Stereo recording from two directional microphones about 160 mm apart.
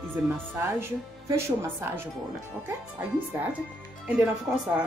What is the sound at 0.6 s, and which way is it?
Speech, 15° right (ahead or behind).